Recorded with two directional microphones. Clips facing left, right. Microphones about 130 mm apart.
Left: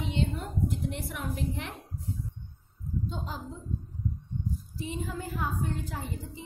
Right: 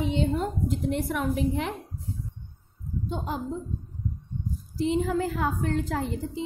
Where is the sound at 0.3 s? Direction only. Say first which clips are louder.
Right 6 dB; 90° right.